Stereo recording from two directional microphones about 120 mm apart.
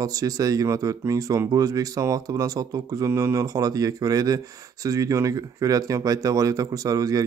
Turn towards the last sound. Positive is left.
turn(degrees=-30)  # may be behind; listen again after turning